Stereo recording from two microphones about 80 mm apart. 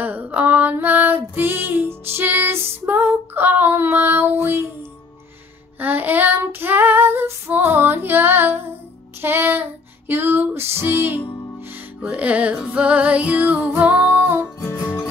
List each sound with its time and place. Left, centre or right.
0.0 s female singing: right
5.8 s child singing: right
9.2 s music: right
12.0 s music: centre